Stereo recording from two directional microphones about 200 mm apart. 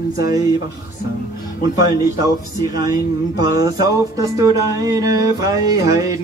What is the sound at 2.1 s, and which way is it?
Music, 20° right (ahead or behind).